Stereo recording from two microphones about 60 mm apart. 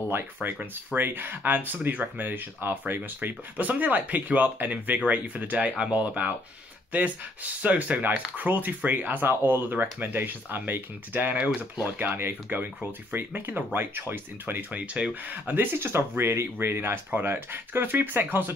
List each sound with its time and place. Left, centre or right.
0.1 s speech: right
7.6 s speech: right